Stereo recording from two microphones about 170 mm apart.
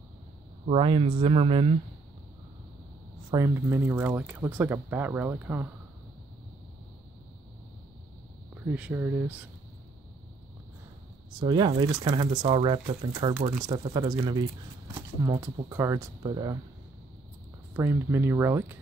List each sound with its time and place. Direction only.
0.7 s speech: 30° right (ahead or behind)
3.3 s speech: 20° right (ahead or behind)
8.6 s speech: 10° right (ahead or behind)
11.3 s speech: 25° right (ahead or behind)
17.7 s speech: 15° right (ahead or behind)